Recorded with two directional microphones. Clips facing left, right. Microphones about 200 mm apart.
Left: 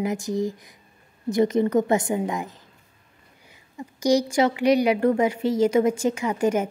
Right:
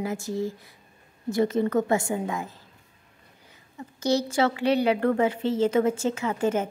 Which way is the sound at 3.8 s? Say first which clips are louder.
Left 4 dB; 15° left (ahead or behind).